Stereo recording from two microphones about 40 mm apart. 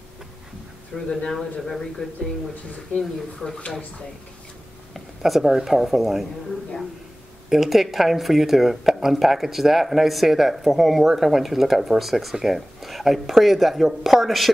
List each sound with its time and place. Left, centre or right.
0.9 s speech: centre
4.9 s a sound: centre
5.4 s speech: centre
5.7 s speech: centre
7.4 s speech: centre